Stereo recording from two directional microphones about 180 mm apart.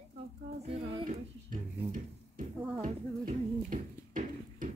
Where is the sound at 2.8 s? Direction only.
45° right (ahead or behind).